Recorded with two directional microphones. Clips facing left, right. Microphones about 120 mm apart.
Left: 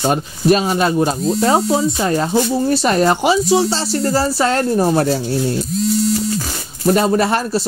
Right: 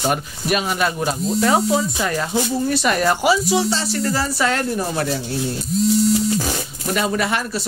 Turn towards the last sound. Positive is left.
turn(degrees=35)  # may be behind; listen again after turning